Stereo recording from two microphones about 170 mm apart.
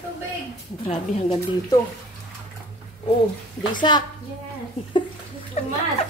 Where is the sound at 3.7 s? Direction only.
25° left (ahead or behind).